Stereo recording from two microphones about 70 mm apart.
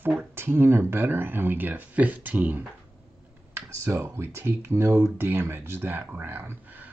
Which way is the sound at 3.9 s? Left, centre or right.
Right.